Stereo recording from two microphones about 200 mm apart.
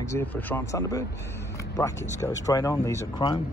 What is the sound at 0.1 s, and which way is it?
Speech, 15° left (ahead or behind).